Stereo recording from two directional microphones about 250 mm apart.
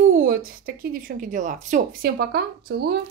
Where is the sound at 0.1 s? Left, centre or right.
Right.